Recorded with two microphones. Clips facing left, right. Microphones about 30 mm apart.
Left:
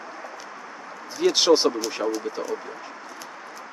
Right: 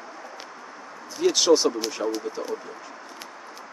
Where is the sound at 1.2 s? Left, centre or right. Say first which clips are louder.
Left 1 dB; left.